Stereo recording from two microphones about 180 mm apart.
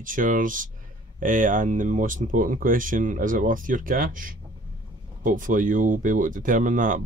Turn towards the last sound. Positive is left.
turn(degrees=-50)  # may be behind; listen again after turning